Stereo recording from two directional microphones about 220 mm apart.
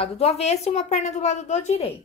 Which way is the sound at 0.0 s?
25° left (ahead or behind).